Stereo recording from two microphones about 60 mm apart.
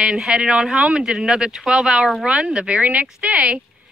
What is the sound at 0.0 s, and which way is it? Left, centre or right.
Speech, centre.